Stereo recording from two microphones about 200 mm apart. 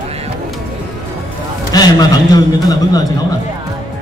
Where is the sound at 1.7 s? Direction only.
20° left (ahead or behind).